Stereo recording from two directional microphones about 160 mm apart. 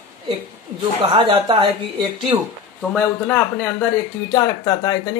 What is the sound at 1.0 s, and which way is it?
Speech, 35° right (ahead or behind).